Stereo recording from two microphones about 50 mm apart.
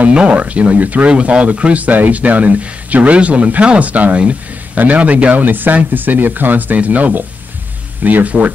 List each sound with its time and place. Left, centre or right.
0.1 s speech: right